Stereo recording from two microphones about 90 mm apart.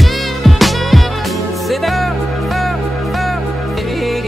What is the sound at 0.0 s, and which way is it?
Music, centre (ahead or behind).